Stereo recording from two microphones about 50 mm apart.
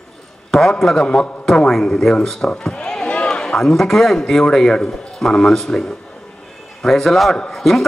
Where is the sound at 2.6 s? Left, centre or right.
Centre.